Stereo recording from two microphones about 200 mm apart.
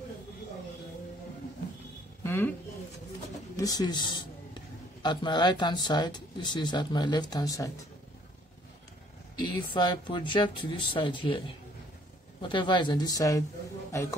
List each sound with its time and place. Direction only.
2.2 s a sound: 10° left (ahead or behind)
3.5 s speech: 20° left (ahead or behind)
9.4 s speech: 20° left (ahead or behind)